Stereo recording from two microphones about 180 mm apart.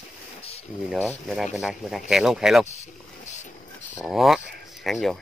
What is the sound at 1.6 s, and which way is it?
Speech, centre (ahead or behind).